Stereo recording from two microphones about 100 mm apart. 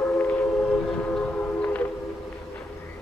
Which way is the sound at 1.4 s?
20° left (ahead or behind).